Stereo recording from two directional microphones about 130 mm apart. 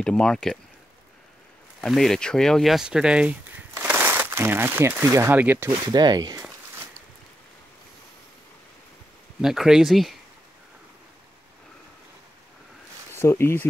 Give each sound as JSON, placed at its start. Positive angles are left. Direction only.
{"t": 0.0, "sound": "speech", "side_deg": 5}
{"t": 1.8, "sound": "speech", "side_deg": 0}
{"t": 5.7, "sound": "speech", "side_deg": -35}
{"t": 6.7, "sound": "a sound", "side_deg": -20}
{"t": 9.4, "sound": "speech", "side_deg": -5}
{"t": 13.1, "sound": "speech", "side_deg": 20}